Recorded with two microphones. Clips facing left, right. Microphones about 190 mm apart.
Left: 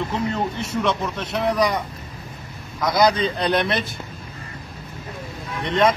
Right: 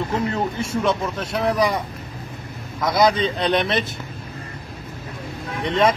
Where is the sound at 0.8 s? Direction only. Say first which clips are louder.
Right 2 dB; 5° right (ahead or behind).